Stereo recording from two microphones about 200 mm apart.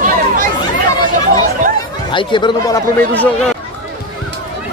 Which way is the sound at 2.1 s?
25° left (ahead or behind).